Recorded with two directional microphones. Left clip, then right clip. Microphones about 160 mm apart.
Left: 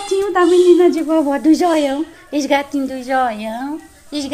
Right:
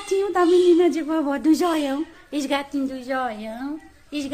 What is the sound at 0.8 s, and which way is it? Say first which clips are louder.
A woman's voice: left 7 dB; 15° right (ahead or behind).